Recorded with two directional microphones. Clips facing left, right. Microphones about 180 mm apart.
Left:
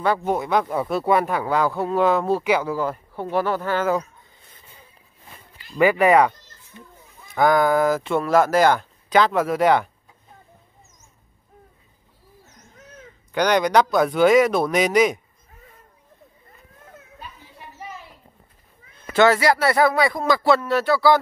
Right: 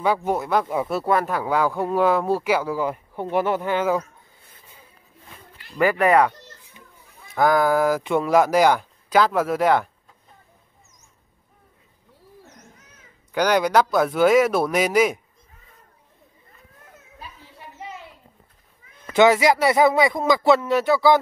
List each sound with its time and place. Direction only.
0.0 s speech: 10° right (ahead or behind)
4.5 s a sound: 5° right (ahead or behind)
5.8 s speech: 5° left (ahead or behind)
7.3 s speech: centre (ahead or behind)
13.3 s speech: 5° right (ahead or behind)
19.1 s speech: 15° right (ahead or behind)